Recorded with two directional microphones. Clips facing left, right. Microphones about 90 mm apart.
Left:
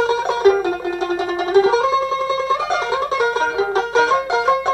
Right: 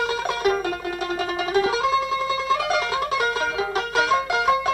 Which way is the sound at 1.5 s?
30° left (ahead or behind).